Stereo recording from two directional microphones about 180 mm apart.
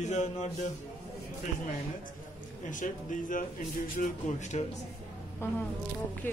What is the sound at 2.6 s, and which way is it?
A man's voice, 45° left (ahead or behind).